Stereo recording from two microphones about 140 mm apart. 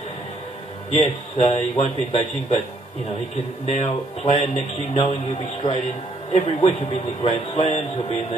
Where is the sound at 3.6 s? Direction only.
50° left (ahead or behind).